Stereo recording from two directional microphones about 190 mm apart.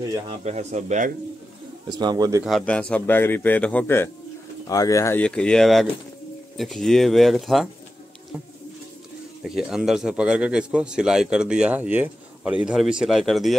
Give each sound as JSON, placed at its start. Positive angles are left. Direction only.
{"t": 0.3, "sound": "speech", "side_deg": -35}
{"t": 1.9, "sound": "speech", "side_deg": -20}
{"t": 2.4, "sound": "speech", "side_deg": 5}
{"t": 9.6, "sound": "speech", "side_deg": 0}